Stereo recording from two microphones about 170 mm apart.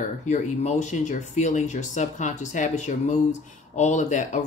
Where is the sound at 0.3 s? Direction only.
45° left (ahead or behind).